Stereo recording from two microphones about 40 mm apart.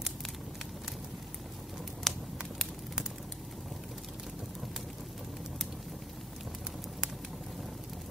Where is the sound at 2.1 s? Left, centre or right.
Centre.